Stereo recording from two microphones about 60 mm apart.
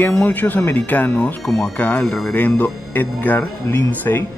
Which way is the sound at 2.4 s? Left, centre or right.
Left.